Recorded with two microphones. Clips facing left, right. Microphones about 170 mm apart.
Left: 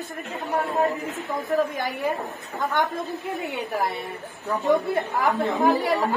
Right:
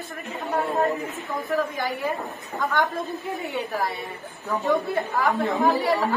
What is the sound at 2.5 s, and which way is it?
A woman's voice, 20° left (ahead or behind).